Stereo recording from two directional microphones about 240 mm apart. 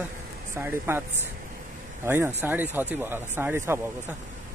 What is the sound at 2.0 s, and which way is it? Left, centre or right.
Speech, centre.